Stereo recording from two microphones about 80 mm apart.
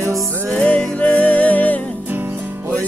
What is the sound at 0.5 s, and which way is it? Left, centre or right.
Music, centre.